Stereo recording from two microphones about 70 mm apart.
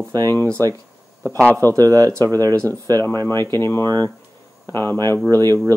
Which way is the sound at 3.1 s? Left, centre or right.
Right.